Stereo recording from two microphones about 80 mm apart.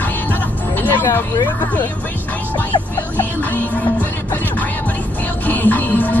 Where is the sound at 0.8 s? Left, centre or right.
Left.